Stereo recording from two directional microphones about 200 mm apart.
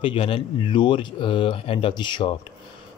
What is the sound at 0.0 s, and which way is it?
A man's voice, 25° left (ahead or behind).